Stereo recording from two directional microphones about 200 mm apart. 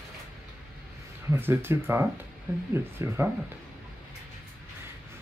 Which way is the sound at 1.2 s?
10° right (ahead or behind).